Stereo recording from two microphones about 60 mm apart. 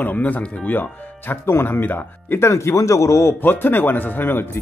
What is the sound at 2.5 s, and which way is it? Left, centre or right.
Speech, left.